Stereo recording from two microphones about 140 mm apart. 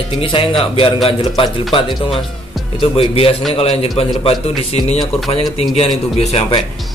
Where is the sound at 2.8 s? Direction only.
45° left (ahead or behind).